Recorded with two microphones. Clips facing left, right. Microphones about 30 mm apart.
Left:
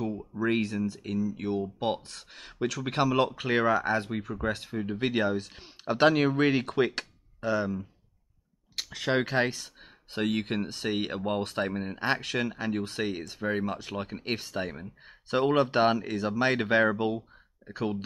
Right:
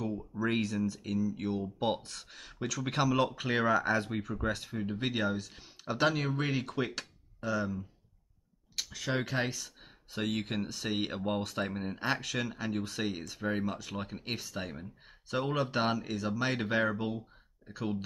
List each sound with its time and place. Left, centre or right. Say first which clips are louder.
0.0 s speech: left 4 dB; centre
2.3 s speech: left 6 dB; left
9.2 s speech: left 6 dB; left
13.7 s speech: left 4 dB; left
15.2 s speech: left 8 dB; left